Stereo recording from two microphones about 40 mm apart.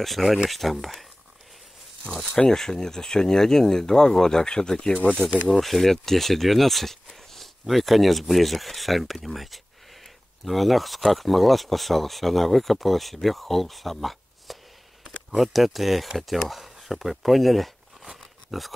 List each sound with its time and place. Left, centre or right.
0.0 s speech: centre
2.2 s speech: centre
5.5 s speech: centre
18.0 s a sound: centre